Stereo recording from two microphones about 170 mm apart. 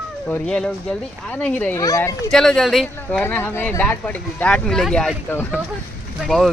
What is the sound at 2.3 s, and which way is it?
Speech, centre (ahead or behind).